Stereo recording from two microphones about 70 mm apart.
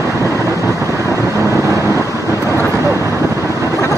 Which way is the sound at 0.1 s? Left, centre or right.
Right.